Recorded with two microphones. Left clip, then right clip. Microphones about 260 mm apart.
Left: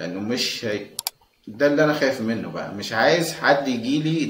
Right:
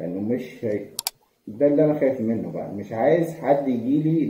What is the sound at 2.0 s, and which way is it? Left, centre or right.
Speech, left.